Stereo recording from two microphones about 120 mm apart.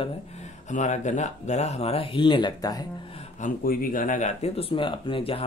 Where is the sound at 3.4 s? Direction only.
90° left; by 4.6 s 70° left (ahead or behind).